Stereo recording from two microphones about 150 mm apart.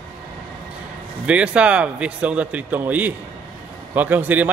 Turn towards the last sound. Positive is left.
turn(degrees=-10)  # may be behind; listen again after turning